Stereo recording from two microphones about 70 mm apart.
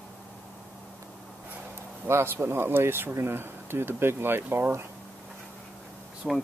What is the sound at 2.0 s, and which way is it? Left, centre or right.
Speech, right.